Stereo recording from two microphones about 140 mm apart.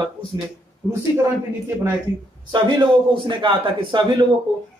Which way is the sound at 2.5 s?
35° right (ahead or behind).